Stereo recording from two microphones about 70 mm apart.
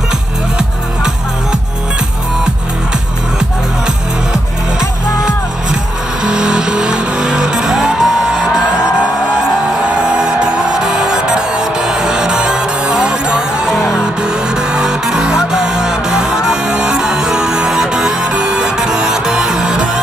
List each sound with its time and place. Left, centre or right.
0.6 s music: centre
3.3 s music: centre